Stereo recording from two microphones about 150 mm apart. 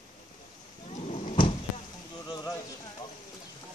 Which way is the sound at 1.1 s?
45° left (ahead or behind).